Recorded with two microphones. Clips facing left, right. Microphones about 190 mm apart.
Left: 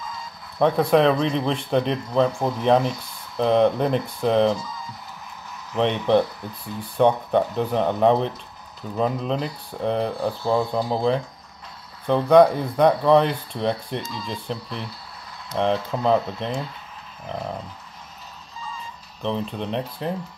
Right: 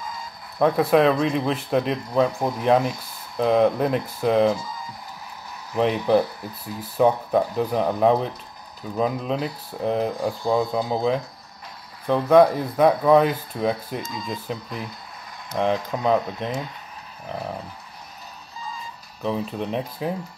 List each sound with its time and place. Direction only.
0.6 s speech: centre (ahead or behind)
5.7 s speech: 10° right (ahead or behind)
10.1 s speech: 15° right (ahead or behind)
10.9 s speech: centre (ahead or behind)
19.2 s speech: 5° right (ahead or behind)